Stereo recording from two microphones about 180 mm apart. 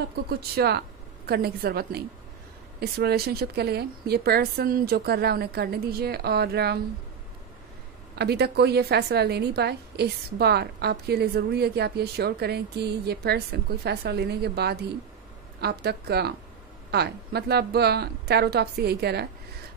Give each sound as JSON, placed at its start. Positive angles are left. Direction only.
{"t": 0.1, "sound": "a woman's voice", "side_deg": -60}
{"t": 8.2, "sound": "a woman's voice", "side_deg": -65}